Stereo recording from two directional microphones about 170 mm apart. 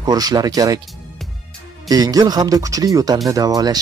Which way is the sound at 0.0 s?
20° right (ahead or behind).